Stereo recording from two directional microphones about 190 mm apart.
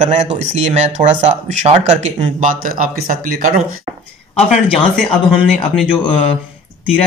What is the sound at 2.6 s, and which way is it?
Speech, 45° right (ahead or behind).